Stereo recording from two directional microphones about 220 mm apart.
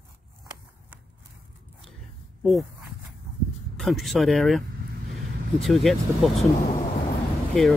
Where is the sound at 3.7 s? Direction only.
Centre (ahead or behind).